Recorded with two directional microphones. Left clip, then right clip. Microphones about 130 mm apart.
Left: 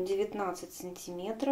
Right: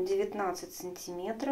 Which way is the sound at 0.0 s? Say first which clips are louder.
Right 1 dB; 35° left (ahead or behind).